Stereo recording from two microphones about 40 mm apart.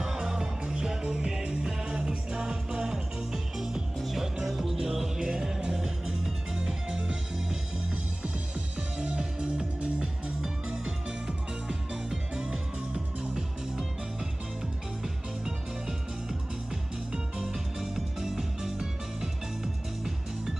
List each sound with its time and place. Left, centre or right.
0.0 s music: centre
4.2 s music: centre
9.0 s music: right
9.8 s music: right
11.9 s music: centre
17.1 s music: centre